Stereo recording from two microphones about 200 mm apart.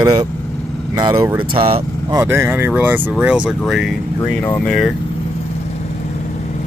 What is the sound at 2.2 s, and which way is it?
Speech, 10° right (ahead or behind).